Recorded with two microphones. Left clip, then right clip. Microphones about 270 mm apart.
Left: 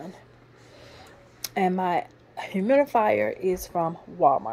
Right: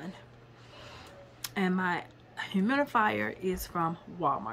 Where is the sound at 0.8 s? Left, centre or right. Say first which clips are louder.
Even; centre.